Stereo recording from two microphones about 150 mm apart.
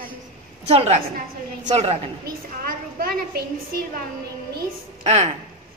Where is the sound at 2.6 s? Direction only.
80° right.